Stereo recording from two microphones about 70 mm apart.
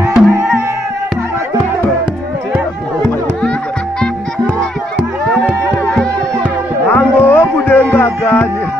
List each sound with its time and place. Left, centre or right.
0.1 s music: centre
6.9 s music: left